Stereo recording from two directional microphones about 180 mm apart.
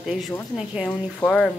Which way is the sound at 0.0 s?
5° right (ahead or behind).